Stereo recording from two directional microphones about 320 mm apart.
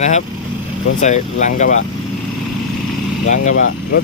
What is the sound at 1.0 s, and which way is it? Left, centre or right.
Speech, left.